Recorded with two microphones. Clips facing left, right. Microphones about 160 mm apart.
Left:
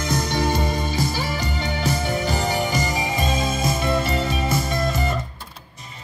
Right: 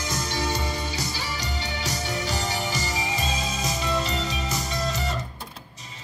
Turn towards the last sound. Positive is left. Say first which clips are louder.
# left 5 dB
turn(degrees=55)  # may be behind; listen again after turning